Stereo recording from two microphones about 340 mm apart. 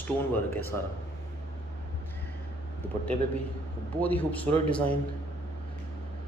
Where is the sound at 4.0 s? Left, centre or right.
Centre.